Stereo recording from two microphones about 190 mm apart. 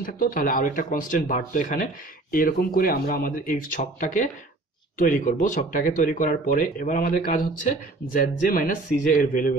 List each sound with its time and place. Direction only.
0.0 s speech: 50° left (ahead or behind)